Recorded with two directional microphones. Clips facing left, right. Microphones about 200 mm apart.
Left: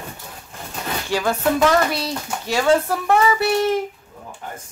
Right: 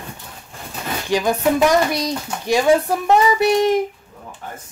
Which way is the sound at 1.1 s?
15° right (ahead or behind).